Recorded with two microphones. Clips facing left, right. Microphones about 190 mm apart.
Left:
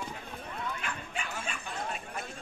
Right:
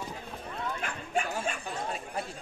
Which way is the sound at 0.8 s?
45° right (ahead or behind).